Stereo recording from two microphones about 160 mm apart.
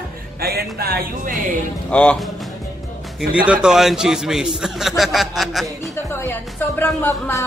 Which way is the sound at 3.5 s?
5° right (ahead or behind).